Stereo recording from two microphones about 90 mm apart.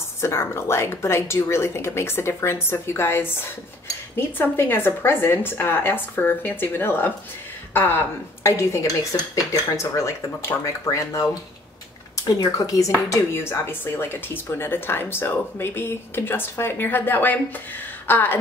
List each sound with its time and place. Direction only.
0.2 s speech: 30° left (ahead or behind)
8.5 s cutlery: 35° left (ahead or behind)
12.3 s cutlery: 45° left (ahead or behind)
13.1 s speech: 30° left (ahead or behind)